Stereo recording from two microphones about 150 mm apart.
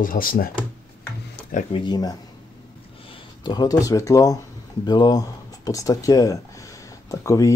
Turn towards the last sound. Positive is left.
turn(degrees=20)  # may be behind; listen again after turning